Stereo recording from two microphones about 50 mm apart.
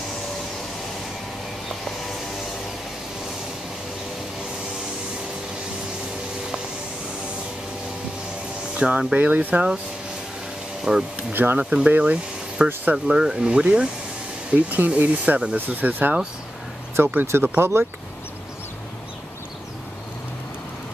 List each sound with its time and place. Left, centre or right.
8.7 s speech: right
10.8 s speech: centre
11.3 s speech: right
12.0 s a sound: centre
12.9 s speech: centre
14.5 s speech: right
17.0 s speech: right